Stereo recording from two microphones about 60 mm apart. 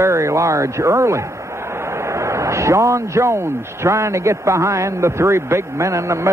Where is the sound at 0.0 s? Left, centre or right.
Right.